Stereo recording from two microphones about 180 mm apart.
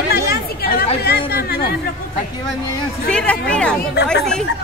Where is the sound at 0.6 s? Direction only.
60° left (ahead or behind).